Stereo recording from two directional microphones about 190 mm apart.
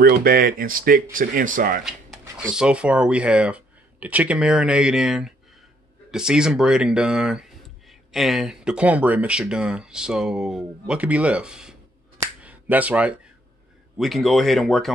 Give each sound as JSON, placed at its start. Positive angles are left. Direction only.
{"t": 0.0, "sound": "speech", "side_deg": -50}
{"t": 2.5, "sound": "speech", "side_deg": -5}
{"t": 12.4, "sound": "a sound", "side_deg": -10}
{"t": 13.9, "sound": "speech", "side_deg": 0}